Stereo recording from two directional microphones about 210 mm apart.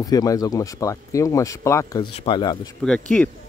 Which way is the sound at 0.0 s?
15° left (ahead or behind).